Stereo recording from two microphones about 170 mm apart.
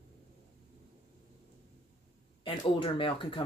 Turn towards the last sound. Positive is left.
turn(degrees=30)  # may be behind; listen again after turning